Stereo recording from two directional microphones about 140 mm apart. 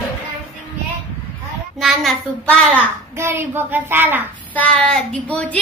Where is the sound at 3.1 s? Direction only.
15° right (ahead or behind).